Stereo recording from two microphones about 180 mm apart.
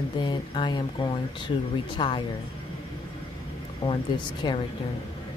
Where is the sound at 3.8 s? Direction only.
25° left (ahead or behind).